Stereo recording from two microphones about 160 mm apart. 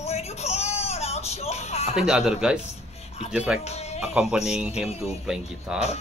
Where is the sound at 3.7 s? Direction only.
40° left (ahead or behind).